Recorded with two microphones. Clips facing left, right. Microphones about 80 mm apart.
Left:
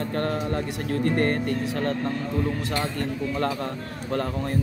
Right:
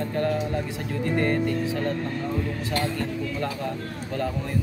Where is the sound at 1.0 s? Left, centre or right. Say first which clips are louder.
Even; left.